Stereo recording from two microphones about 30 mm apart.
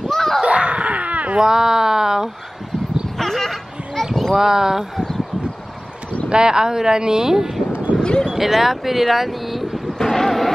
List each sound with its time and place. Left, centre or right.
0.1 s screaming: centre
0.5 s screaming: right
1.4 s speech: centre
3.2 s a sound: centre
4.3 s speech: centre
6.2 s speech: right
7.7 s a sound: right
8.4 s speech: centre
9.9 s vehicle: centre